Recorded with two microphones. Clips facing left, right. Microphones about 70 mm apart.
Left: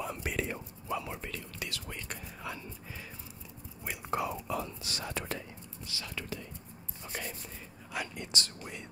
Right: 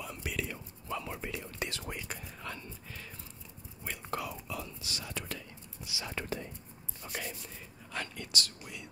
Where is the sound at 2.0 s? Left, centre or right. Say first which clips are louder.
Left 1 dB; centre.